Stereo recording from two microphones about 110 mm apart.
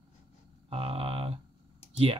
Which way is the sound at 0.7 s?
60° right (ahead or behind).